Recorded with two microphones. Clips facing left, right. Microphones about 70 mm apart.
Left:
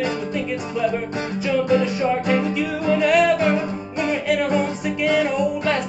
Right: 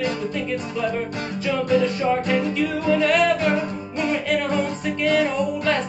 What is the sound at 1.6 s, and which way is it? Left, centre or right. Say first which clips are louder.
Music: right 2 dB; centre.